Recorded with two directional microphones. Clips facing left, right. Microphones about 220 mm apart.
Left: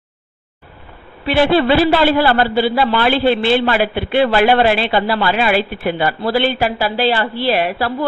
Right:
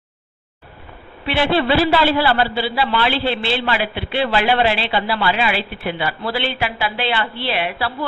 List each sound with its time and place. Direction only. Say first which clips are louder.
1.2 s a man's voice: left 5 dB; 45° left (ahead or behind)